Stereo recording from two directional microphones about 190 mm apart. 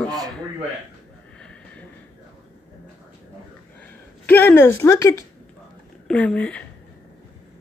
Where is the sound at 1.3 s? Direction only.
5° left (ahead or behind).